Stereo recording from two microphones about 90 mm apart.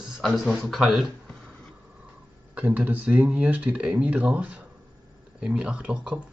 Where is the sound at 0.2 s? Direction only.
Centre (ahead or behind).